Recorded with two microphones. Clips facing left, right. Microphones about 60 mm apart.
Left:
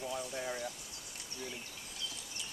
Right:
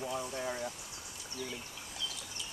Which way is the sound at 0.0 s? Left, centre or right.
Right.